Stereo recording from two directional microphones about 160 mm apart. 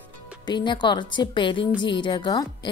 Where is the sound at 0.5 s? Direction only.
30° left (ahead or behind).